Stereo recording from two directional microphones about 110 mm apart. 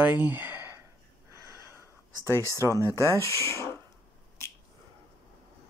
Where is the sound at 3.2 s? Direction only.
25° left (ahead or behind).